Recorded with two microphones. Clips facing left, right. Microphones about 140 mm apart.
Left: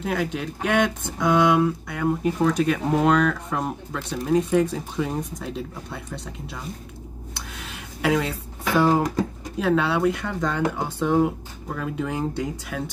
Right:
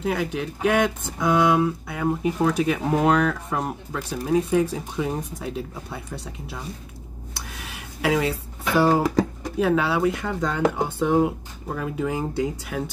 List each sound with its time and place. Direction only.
0.0 s speech: 5° right (ahead or behind)
7.6 s a sound: 5° right (ahead or behind)
9.6 s speech: 5° right (ahead or behind)